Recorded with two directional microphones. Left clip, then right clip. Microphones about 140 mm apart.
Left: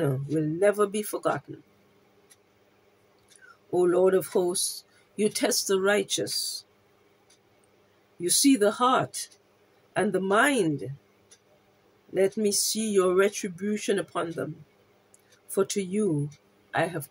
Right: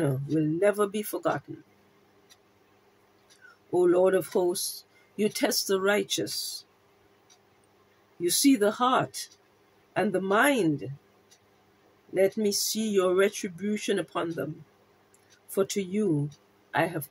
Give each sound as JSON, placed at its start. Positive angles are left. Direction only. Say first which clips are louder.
{"t": 0.0, "sound": "speech", "louder": "even", "side_deg": 5}
{"t": 3.7, "sound": "speech", "louder": "even", "side_deg": 5}
{"t": 8.2, "sound": "speech", "louder": "left 1 dB", "side_deg": 5}
{"t": 12.1, "sound": "speech", "louder": "even", "side_deg": 5}
{"t": 15.5, "sound": "speech", "louder": "left 1 dB", "side_deg": 5}